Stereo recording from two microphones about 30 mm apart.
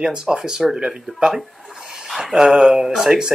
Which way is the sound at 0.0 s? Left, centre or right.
Right.